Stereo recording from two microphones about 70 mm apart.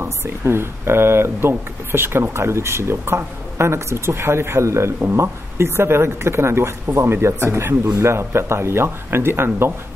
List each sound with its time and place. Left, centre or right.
0.0 s speech: right